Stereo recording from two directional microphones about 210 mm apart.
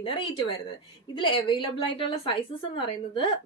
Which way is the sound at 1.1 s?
20° left (ahead or behind).